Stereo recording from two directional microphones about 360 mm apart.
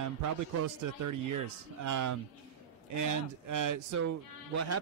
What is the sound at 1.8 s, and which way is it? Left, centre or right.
Speech, right.